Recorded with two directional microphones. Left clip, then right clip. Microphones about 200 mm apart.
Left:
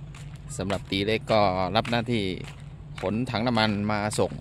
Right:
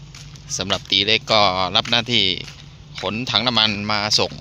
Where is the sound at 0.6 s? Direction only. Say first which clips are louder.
Right 10 dB; 5° left (ahead or behind).